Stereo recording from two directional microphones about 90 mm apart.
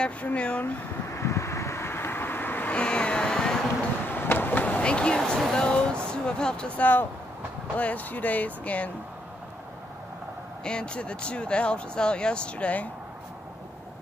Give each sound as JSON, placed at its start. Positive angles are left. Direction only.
{"t": 0.0, "sound": "speech", "side_deg": 15}
{"t": 1.1, "sound": "vehicle", "side_deg": 35}
{"t": 4.1, "sound": "a sound", "side_deg": 25}
{"t": 5.4, "sound": "speech", "side_deg": 5}
{"t": 10.6, "sound": "speech", "side_deg": 10}